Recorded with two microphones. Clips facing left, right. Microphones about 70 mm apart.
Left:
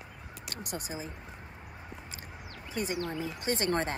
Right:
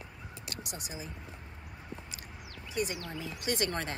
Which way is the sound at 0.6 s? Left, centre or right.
Left.